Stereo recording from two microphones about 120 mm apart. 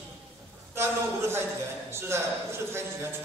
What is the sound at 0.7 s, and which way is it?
Speech, 20° right (ahead or behind).